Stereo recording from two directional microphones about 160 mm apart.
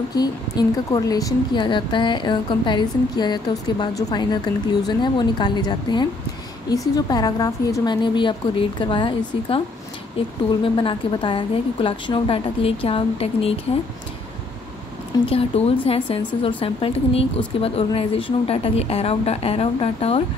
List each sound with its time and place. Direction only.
0.1 s speech: 25° left (ahead or behind)
10.6 s a woman's voice: 35° left (ahead or behind)
15.2 s a woman's voice: 40° left (ahead or behind)